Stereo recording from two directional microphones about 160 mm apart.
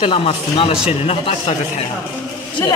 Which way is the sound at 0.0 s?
35° left (ahead or behind).